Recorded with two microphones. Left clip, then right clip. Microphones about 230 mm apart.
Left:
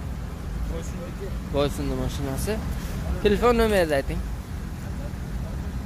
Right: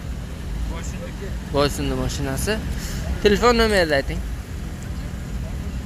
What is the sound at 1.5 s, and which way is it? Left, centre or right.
Speech, centre.